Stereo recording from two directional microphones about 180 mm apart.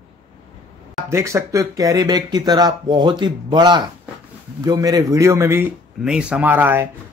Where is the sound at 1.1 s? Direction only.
15° right (ahead or behind).